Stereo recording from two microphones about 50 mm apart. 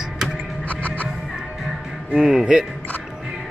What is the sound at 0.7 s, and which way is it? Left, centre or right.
Music, left.